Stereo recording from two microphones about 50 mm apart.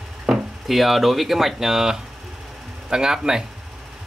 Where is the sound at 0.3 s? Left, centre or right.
Centre.